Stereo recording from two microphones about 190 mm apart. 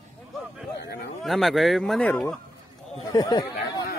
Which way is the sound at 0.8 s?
60° left (ahead or behind).